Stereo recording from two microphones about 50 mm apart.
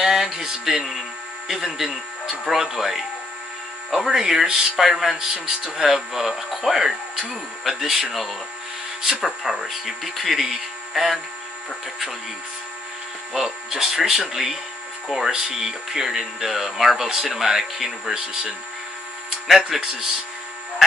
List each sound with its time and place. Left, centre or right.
0.0 s a sound: centre
1.5 s speech: centre
13.3 s speech: centre
19.4 s speech: centre